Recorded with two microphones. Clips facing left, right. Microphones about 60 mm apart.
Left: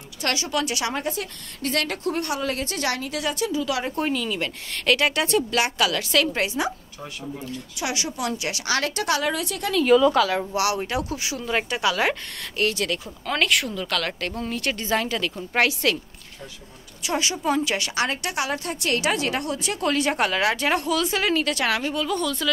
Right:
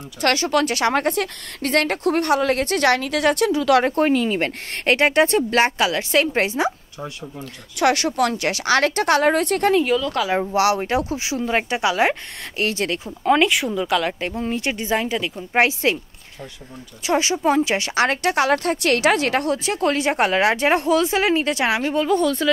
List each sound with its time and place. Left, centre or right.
0.2 s a woman's voice: right
0.9 s a woman's voice: right
7.8 s a woman's voice: right
10.5 s speech: right; by 15.3 s centre
15.5 s speech: right
17.0 s a woman's voice: right